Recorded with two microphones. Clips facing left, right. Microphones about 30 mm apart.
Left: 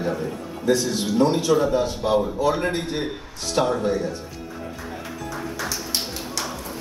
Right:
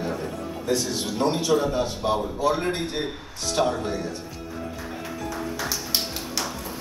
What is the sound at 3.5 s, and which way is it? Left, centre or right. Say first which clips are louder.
Speech: left 2 dB; centre.